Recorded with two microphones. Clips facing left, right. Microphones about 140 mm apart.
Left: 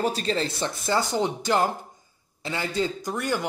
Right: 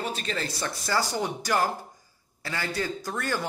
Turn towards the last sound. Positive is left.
turn(degrees=20)  # may be behind; listen again after turning